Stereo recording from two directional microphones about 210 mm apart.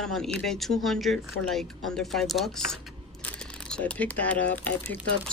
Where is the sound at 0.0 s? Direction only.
Centre (ahead or behind).